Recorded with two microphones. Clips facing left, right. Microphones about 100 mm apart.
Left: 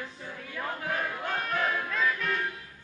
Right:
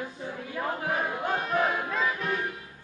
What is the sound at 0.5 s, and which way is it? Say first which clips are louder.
Battle cry: right 3 dB; 30° right (ahead or behind).